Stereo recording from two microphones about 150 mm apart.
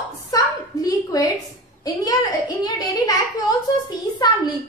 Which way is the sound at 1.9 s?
25° left (ahead or behind).